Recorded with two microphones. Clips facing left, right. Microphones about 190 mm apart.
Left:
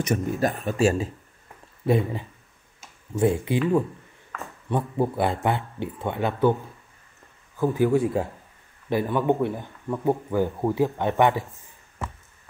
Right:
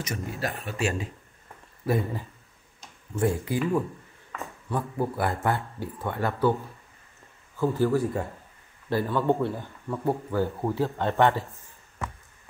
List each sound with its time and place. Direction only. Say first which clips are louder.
0.1 s speech: left 9 dB; 50° left (ahead or behind)
0.7 s speech: left 8 dB; 35° left (ahead or behind)
1.9 s speech: left 4 dB; 25° left (ahead or behind)
4.6 s speech: left 4 dB; 25° left (ahead or behind)
7.5 s speech: left 3 dB; 15° left (ahead or behind)